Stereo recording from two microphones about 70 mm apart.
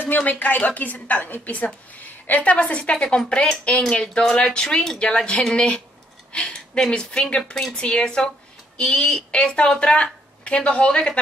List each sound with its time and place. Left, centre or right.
0.1 s a woman's voice: left